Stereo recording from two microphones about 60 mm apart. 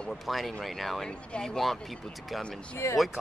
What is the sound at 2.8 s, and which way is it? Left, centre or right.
Speech, left.